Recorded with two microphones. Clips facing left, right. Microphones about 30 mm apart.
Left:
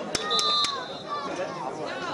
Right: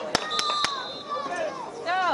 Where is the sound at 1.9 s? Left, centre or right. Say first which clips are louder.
Right 8 dB; right.